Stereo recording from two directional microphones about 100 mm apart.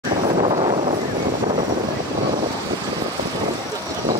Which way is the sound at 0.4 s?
65° right (ahead or behind).